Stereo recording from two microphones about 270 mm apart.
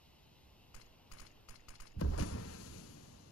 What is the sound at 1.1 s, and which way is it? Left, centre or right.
Keys jangling, left.